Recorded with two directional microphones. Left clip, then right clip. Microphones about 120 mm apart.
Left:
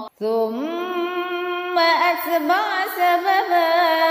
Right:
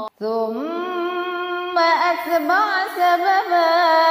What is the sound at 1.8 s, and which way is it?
Music, 15° left (ahead or behind).